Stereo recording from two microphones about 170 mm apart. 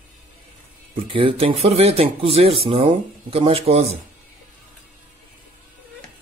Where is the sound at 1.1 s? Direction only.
30° right (ahead or behind).